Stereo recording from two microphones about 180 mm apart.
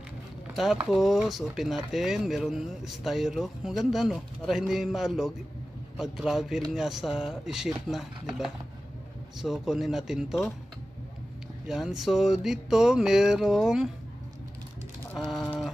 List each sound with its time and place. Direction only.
0.8 s speech: centre (ahead or behind)
11.6 s speech: centre (ahead or behind)
15.1 s speech: centre (ahead or behind)